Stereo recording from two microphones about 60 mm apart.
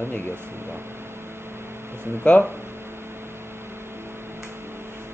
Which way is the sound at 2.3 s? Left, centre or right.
Centre.